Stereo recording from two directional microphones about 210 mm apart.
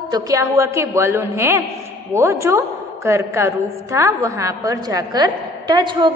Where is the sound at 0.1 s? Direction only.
15° right (ahead or behind).